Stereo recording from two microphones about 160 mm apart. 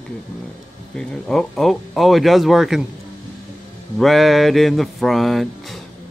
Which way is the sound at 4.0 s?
Centre (ahead or behind).